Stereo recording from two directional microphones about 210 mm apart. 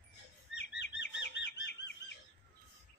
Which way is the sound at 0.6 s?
55° left (ahead or behind).